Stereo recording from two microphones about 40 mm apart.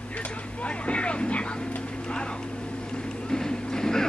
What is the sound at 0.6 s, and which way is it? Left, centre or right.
Vehicle, left.